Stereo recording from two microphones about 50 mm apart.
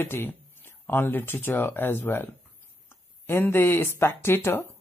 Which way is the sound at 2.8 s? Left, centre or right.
Left.